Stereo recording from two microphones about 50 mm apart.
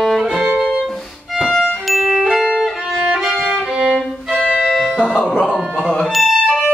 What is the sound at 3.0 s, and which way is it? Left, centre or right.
Violin, centre.